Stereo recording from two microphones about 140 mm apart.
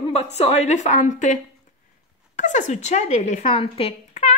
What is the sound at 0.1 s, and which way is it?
A woman's voice, 50° left (ahead or behind).